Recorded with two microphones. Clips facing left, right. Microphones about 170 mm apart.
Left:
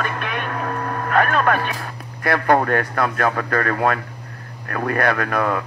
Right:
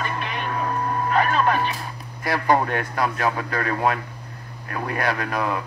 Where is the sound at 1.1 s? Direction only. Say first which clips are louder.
Left 3 dB; 55° left (ahead or behind).